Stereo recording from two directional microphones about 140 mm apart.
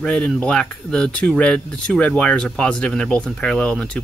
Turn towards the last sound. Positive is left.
turn(degrees=5)  # may be behind; listen again after turning